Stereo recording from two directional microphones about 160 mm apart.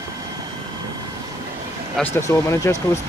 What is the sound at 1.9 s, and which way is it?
Speech, 15° left (ahead or behind).